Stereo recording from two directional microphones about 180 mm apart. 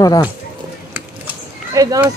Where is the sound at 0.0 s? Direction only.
20° left (ahead or behind).